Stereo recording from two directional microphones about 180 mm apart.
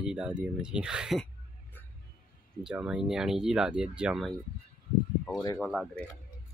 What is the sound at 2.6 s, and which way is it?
Speech, 5° right (ahead or behind).